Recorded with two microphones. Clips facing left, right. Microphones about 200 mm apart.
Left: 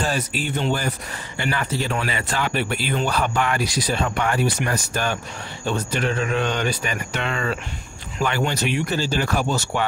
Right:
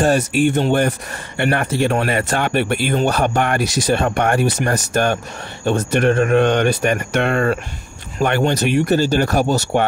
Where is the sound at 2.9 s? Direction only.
45° right (ahead or behind).